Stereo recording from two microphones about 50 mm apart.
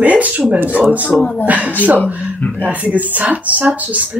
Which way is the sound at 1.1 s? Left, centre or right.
Centre.